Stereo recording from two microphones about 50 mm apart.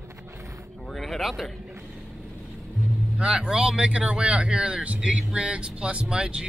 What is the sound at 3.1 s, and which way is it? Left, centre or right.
Speech, centre.